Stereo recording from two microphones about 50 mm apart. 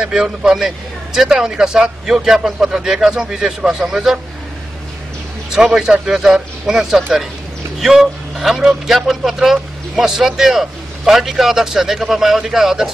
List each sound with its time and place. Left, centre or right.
0.0 s a man's voice: centre
5.5 s a man's voice: centre